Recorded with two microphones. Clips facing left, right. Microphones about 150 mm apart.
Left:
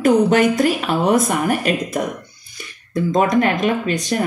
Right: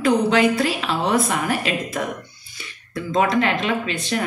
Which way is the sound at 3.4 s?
45° left (ahead or behind).